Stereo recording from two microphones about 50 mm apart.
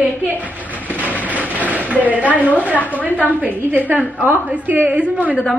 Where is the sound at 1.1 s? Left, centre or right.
Left.